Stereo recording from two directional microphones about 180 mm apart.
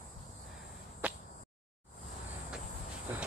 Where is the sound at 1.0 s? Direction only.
5° right (ahead or behind).